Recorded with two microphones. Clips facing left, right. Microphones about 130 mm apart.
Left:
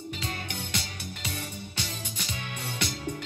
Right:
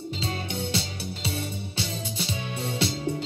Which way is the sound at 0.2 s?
30° right (ahead or behind).